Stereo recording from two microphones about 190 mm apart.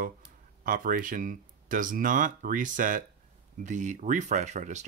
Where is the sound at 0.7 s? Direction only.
45° right (ahead or behind).